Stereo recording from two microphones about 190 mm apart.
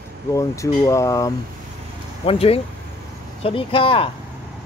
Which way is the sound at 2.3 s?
30° left (ahead or behind).